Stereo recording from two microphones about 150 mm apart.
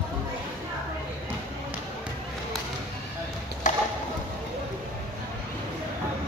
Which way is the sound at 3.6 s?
60° left (ahead or behind).